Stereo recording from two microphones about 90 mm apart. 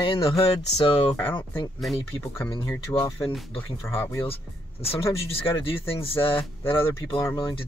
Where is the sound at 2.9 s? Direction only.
50° left (ahead or behind).